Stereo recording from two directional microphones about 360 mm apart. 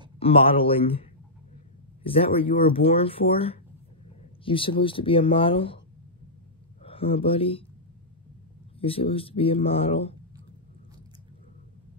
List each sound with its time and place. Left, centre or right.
0.2 s speech: centre
2.0 s speech: centre
6.8 s speech: centre
8.7 s speech: centre